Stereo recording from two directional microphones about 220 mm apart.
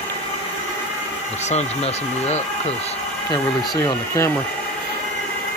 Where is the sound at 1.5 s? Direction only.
30° left (ahead or behind).